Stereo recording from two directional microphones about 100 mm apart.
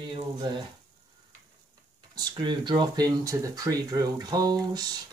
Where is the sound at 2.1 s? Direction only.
45° right (ahead or behind).